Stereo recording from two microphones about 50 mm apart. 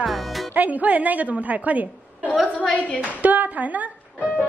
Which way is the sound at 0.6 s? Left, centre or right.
Right.